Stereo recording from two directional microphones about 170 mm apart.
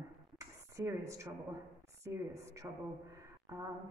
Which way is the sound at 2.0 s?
20° right (ahead or behind).